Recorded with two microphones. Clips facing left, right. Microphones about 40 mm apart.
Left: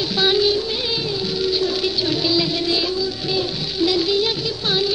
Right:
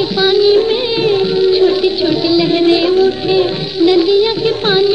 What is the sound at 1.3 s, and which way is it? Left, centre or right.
Music, right.